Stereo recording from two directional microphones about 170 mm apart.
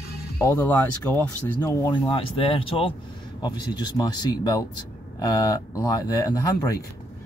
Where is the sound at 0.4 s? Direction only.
15° left (ahead or behind).